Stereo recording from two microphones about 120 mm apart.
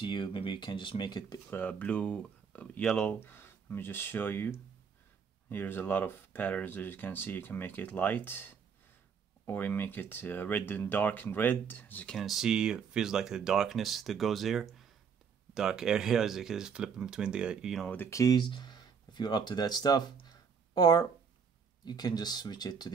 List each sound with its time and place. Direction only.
0.0 s speech: 45° left (ahead or behind)
1.5 s speech: 15° left (ahead or behind)
3.2 s speech: 20° left (ahead or behind)
9.5 s speech: 15° left (ahead or behind); by 17.8 s 5° right (ahead or behind)
17.8 s speech: 15° left (ahead or behind); by 22.8 s 35° left (ahead or behind)